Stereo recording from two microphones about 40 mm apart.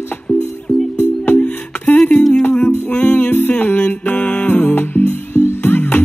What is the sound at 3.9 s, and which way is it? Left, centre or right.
Mantra, left.